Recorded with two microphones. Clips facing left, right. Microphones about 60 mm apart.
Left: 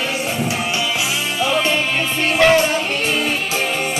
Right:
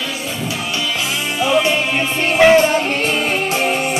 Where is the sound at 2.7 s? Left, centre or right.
Right.